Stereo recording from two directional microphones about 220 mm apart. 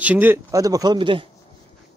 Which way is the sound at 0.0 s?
10° right (ahead or behind).